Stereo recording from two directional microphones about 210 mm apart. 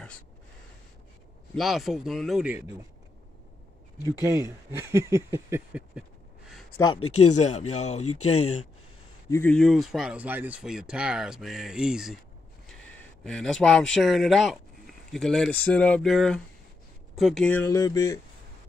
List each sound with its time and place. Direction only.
1.5 s speech: centre (ahead or behind)
4.2 s speech: 15° right (ahead or behind)
6.7 s speech: 90° left
7.3 s speech: 30° left (ahead or behind)
8.0 s speech: 90° left
9.3 s speech: 5° left (ahead or behind)
17.6 s a sound: 15° left (ahead or behind)